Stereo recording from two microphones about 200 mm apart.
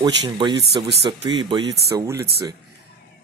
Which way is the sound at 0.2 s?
20° right (ahead or behind).